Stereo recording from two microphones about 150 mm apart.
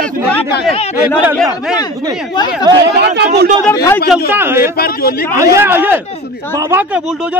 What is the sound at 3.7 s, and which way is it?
Speech, 20° left (ahead or behind).